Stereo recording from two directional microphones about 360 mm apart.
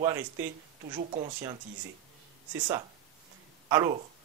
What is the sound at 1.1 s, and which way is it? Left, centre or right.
Speech, centre.